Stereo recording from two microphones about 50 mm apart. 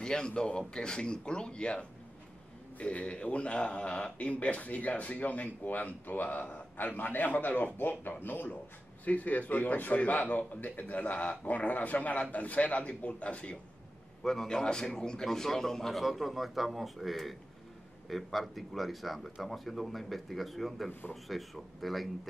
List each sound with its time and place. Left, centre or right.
0.0 s speech: centre
14.2 s a man's voice: centre